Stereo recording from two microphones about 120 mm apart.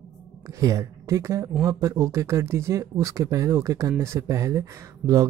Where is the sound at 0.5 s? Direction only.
25° right (ahead or behind).